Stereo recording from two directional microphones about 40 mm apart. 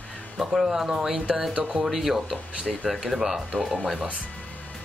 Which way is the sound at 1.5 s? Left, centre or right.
Right.